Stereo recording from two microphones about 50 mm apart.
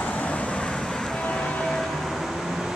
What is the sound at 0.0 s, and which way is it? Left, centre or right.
Vehicle, left.